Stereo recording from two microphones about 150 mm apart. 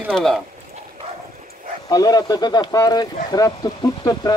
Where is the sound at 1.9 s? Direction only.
25° left (ahead or behind).